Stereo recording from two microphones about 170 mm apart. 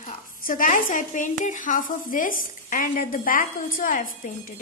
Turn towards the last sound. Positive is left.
turn(degrees=55)  # may be behind; listen again after turning